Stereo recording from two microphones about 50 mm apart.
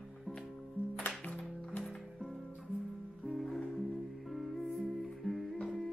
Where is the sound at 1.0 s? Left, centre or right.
Left.